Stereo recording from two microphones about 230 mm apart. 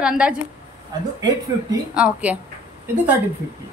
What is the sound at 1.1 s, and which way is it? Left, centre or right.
Speech, centre.